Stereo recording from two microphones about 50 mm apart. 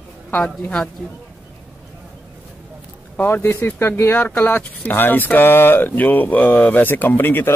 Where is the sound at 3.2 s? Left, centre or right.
Left.